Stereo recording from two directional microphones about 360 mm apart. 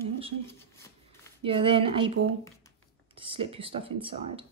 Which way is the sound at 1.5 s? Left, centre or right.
Centre.